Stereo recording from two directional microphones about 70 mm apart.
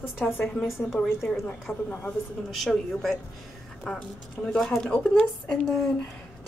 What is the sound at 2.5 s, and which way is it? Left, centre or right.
Speech, centre.